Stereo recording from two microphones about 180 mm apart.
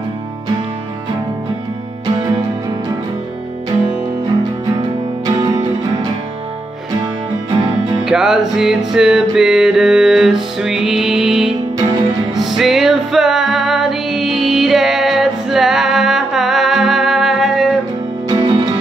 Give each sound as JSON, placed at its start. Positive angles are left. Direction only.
{"t": 4.7, "sound": "music", "side_deg": -25}
{"t": 7.5, "sound": "music", "side_deg": -25}
{"t": 8.0, "sound": "music", "side_deg": -5}